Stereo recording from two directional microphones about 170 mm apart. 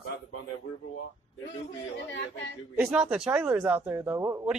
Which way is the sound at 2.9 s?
5° right (ahead or behind).